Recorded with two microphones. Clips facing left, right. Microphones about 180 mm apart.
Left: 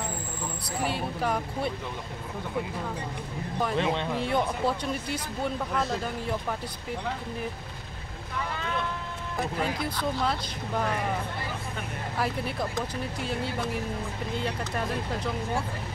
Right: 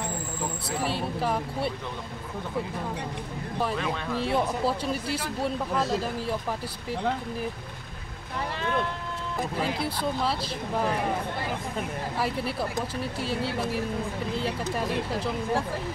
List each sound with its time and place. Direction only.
0.7 s speech: centre (ahead or behind)
3.7 s speech: 25° left (ahead or behind)
4.2 s speech: centre (ahead or behind)
5.0 s speech: 30° right (ahead or behind)
5.4 s speech: centre (ahead or behind)
10.2 s speech: centre (ahead or behind)
12.2 s speech: centre (ahead or behind)